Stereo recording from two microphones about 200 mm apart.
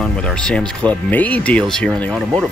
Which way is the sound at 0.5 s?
5° left (ahead or behind).